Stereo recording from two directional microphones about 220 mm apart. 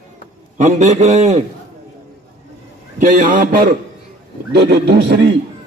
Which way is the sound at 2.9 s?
35° right (ahead or behind).